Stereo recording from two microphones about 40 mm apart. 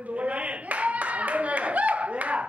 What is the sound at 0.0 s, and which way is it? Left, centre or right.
Clapping, right.